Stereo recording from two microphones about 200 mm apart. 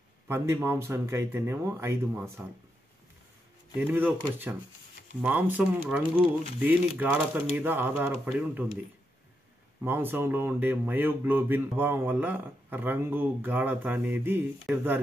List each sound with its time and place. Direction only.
0.3 s speech: 10° right (ahead or behind)
3.8 s speech: 10° right (ahead or behind)
9.8 s speech: 10° right (ahead or behind)